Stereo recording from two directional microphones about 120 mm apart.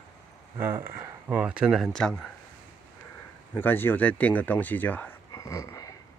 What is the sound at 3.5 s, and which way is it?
Speech, 15° left (ahead or behind).